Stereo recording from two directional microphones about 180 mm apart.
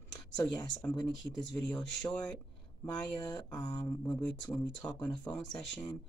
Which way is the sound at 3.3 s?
25° left (ahead or behind).